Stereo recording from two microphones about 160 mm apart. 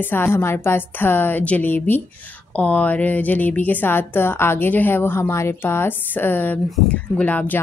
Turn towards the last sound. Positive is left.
turn(degrees=10)  # may be behind; listen again after turning